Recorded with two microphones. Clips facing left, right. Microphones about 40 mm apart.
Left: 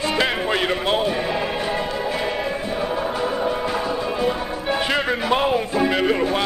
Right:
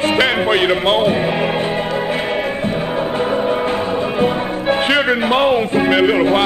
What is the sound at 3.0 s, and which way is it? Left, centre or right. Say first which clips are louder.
Music: right 5 dB; right.